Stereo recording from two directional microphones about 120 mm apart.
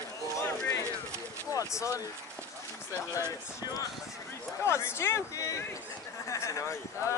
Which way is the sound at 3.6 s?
30° left (ahead or behind).